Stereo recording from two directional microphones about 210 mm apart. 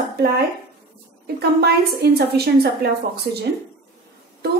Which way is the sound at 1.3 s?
50° right (ahead or behind).